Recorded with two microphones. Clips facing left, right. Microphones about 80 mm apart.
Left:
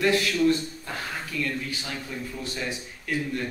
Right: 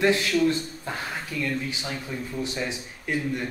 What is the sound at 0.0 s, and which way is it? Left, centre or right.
Speech, right.